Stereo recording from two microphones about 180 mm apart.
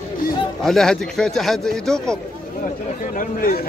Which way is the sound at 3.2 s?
55° left (ahead or behind).